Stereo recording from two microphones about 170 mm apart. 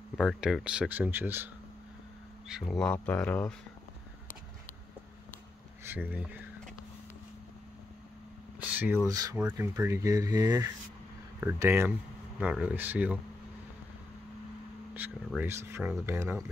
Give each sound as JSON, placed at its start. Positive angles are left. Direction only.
{"t": 0.2, "sound": "speech", "side_deg": 0}
{"t": 5.9, "sound": "speech", "side_deg": -10}
{"t": 8.6, "sound": "speech", "side_deg": -10}
{"t": 9.1, "sound": "speech", "side_deg": -20}
{"t": 9.4, "sound": "speech", "side_deg": -10}
{"t": 15.4, "sound": "speech", "side_deg": -15}